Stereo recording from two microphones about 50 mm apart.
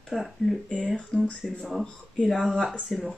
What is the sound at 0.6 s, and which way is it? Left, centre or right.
Speech, left.